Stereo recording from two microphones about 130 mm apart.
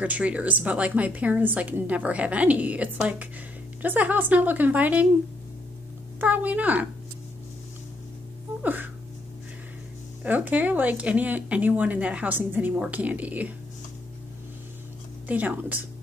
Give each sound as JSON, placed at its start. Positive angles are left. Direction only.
{"t": 0.0, "sound": "speech", "side_deg": -10}
{"t": 6.2, "sound": "speech", "side_deg": -10}
{"t": 8.6, "sound": "speech", "side_deg": -15}
{"t": 10.2, "sound": "speech", "side_deg": -15}
{"t": 15.2, "sound": "speech", "side_deg": -10}